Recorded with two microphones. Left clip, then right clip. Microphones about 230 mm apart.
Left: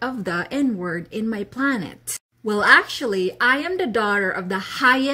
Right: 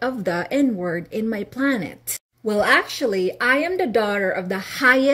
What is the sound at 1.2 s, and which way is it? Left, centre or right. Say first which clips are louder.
A woman's voice: left 1 dB; centre.